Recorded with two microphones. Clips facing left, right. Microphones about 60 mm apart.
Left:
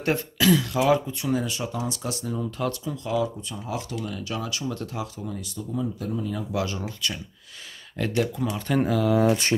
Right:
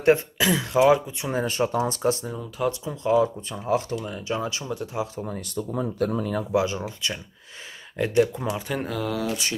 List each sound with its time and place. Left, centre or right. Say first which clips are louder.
0.0 s speech: right 3 dB; right
1.3 s speech: right 4 dB; right
2.8 s speech: right 8 dB; right
4.0 s speech: right 3 dB; right
4.6 s speech: right 2 dB; centre
5.1 s speech: right 2 dB; right
5.6 s speech: right 5 dB; right
6.5 s speech: right 7 dB; right
8.6 s speech: left 5 dB; centre
9.2 s mantra: left 7 dB; left